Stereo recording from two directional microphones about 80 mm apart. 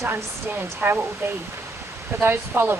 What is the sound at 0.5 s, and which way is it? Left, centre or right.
Speech, right.